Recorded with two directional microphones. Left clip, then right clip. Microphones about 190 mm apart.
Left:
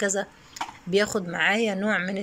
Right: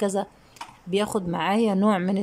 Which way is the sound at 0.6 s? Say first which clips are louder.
Left 7 dB; 15° right (ahead or behind).